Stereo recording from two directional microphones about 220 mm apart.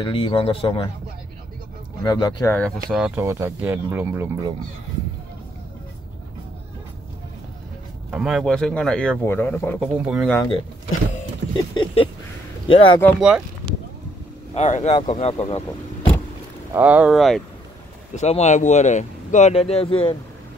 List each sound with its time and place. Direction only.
0.0 s speech: 20° left (ahead or behind)
2.0 s speech: 20° left (ahead or behind)
2.5 s speech: centre (ahead or behind)
3.2 s speech: 10° right (ahead or behind)
8.1 s speech: centre (ahead or behind)
9.9 s speech: 5° right (ahead or behind)
11.5 s speech: 20° left (ahead or behind)
14.5 s speech: 30° left (ahead or behind)
16.7 s speech: 5° right (ahead or behind)
18.1 s speech: 30° left (ahead or behind)